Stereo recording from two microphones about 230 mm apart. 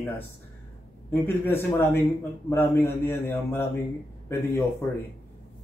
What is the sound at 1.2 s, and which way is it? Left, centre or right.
Speech, centre.